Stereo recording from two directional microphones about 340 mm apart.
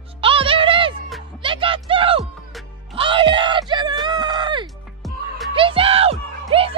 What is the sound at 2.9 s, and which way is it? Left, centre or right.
Music, centre.